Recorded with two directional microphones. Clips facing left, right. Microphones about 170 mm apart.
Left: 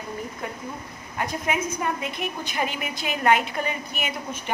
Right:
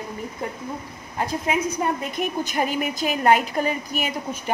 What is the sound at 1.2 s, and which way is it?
A woman's voice, 30° right (ahead or behind).